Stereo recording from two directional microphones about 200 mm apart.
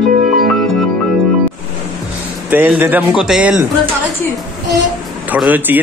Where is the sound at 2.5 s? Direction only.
10° right (ahead or behind).